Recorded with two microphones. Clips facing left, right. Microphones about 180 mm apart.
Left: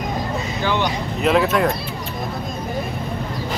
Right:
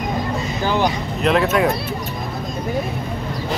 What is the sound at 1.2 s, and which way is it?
Speech, centre (ahead or behind).